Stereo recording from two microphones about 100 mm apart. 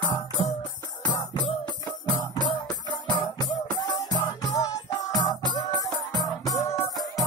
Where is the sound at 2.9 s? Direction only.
50° left (ahead or behind).